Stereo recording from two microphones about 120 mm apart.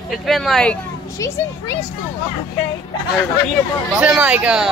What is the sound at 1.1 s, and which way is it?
Speech, 25° left (ahead or behind).